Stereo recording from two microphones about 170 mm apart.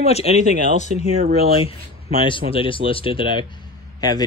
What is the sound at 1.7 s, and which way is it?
Speech, 30° left (ahead or behind).